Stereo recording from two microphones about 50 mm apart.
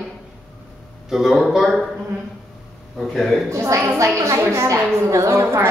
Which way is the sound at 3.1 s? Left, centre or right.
Centre.